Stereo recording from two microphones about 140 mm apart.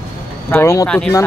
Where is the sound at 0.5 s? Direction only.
20° left (ahead or behind).